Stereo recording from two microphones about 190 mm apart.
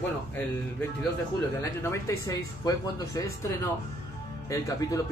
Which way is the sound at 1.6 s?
15° left (ahead or behind).